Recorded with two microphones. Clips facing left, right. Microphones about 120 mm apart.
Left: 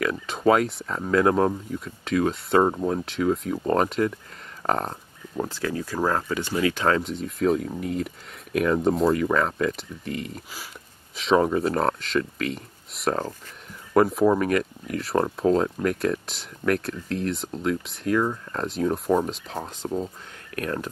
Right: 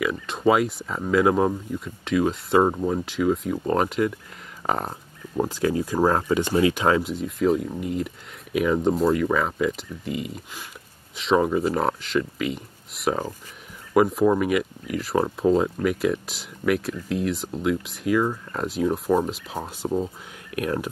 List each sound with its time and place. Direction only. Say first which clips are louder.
0.0 s speech: even; centre (ahead or behind)
7.0 s speech: right 2 dB; 5° right (ahead or behind)